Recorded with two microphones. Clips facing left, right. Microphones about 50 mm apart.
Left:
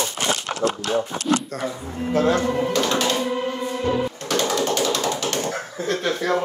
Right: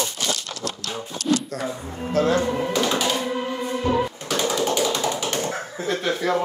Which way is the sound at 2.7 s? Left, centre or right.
Centre.